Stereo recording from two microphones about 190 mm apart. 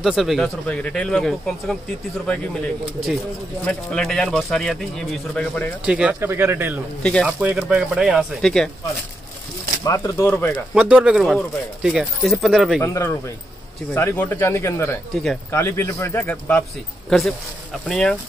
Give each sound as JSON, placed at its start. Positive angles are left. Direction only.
{"t": 0.0, "sound": "speech", "side_deg": 0}
{"t": 3.6, "sound": "speech", "side_deg": 5}
{"t": 5.9, "sound": "speech", "side_deg": -5}
{"t": 7.0, "sound": "speech", "side_deg": 5}
{"t": 9.8, "sound": "a man's voice", "side_deg": 15}
{"t": 10.7, "sound": "speech", "side_deg": -5}
{"t": 12.8, "sound": "a man's voice", "side_deg": 15}
{"t": 17.8, "sound": "speech", "side_deg": 5}